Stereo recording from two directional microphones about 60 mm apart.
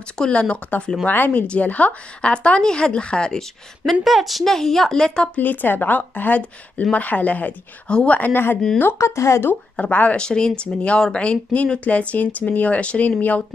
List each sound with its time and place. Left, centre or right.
0.2 s a woman's voice: centre
5.4 s a woman's voice: left
8.2 s a woman's voice: left
8.9 s speech: left
9.8 s speech: left